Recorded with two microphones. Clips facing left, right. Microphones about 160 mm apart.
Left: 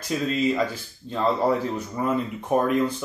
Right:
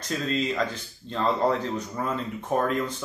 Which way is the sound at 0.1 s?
5° left (ahead or behind).